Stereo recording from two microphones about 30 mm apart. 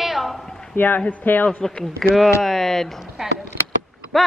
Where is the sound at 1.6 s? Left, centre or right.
Centre.